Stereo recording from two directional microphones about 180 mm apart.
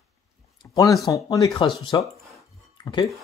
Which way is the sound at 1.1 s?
20° left (ahead or behind).